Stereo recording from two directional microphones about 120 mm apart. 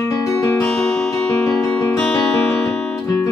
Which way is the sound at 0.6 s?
10° left (ahead or behind).